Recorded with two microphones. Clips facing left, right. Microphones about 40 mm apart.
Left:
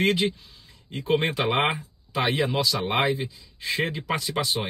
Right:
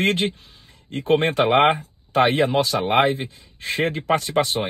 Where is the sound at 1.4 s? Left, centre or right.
Right.